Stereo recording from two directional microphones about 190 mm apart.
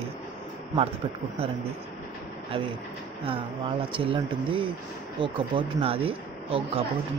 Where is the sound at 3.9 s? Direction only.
25° right (ahead or behind).